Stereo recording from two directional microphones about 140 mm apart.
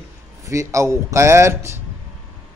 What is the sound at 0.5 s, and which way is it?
A man's voice, 20° right (ahead or behind).